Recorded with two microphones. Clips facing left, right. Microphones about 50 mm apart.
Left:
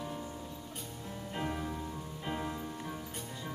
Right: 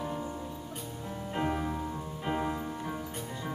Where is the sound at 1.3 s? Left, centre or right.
Centre.